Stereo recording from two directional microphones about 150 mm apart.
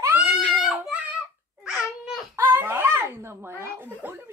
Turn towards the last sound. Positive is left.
turn(degrees=-15)  # may be behind; listen again after turning